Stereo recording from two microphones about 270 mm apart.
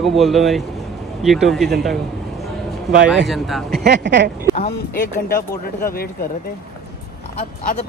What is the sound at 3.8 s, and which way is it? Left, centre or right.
Speech, right.